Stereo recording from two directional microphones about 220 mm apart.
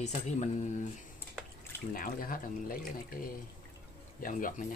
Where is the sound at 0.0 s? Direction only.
30° left (ahead or behind).